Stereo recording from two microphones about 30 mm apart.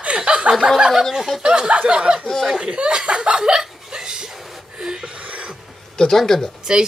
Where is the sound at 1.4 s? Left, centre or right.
Right.